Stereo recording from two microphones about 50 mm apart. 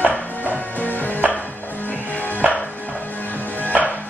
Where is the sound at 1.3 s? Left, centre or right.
Left.